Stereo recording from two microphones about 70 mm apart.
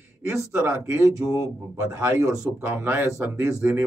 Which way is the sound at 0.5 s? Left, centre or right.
Right.